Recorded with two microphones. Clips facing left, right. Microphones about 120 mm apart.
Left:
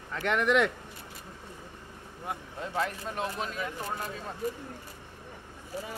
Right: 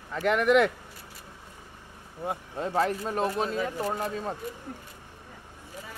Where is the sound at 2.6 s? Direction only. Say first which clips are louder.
Right 6 dB; 40° right (ahead or behind).